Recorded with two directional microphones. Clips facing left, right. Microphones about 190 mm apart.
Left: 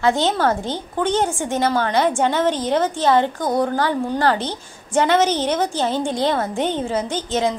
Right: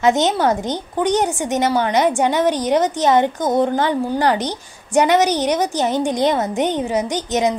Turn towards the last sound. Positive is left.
turn(degrees=-15)  # may be behind; listen again after turning